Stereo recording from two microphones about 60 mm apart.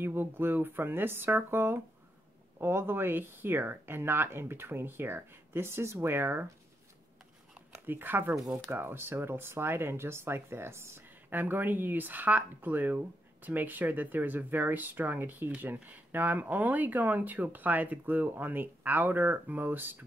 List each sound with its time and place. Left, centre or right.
0.0 s speech: right
7.8 s speech: right
11.2 s speech: right